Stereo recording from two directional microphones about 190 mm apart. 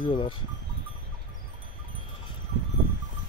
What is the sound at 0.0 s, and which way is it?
Speech, 25° left (ahead or behind).